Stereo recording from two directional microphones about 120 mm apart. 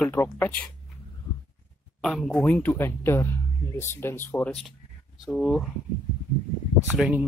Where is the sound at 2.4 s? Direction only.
15° left (ahead or behind).